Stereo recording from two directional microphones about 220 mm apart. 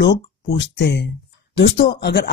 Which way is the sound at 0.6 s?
50° left (ahead or behind).